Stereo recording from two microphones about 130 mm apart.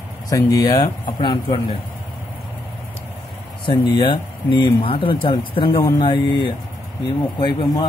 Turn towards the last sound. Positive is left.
turn(degrees=35)  # may be behind; listen again after turning